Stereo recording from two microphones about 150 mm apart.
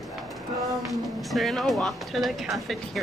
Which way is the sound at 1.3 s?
Centre (ahead or behind).